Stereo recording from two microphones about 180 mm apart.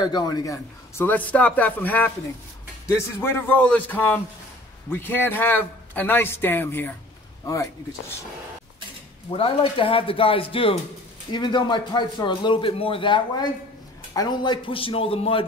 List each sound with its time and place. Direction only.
0.0 s a man's voice: 20° left (ahead or behind)
9.3 s a man's voice: 30° left (ahead or behind)